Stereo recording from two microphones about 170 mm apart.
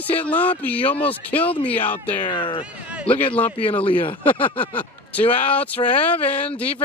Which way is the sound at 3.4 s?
30° left (ahead or behind).